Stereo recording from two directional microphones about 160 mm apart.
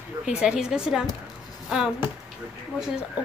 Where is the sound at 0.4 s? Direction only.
5° right (ahead or behind).